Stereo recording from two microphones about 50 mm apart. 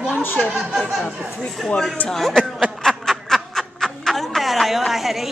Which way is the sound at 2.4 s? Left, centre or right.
Centre.